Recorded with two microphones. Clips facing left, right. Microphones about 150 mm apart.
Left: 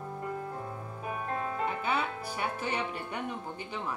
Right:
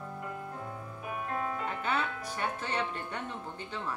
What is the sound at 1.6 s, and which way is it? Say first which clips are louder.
Speech: left 2 dB; 10° left (ahead or behind).